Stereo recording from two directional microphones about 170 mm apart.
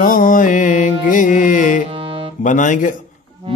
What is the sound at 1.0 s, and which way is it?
Carnatic music, 50° left (ahead or behind).